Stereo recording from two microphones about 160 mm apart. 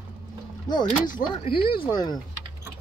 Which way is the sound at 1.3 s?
35° left (ahead or behind).